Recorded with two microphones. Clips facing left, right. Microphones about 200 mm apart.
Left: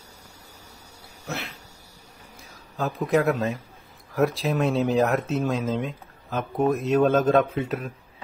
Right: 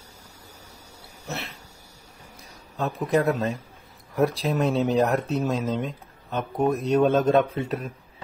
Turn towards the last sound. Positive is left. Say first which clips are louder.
# left 1 dB
turn(degrees=0)  # may be behind; listen again after turning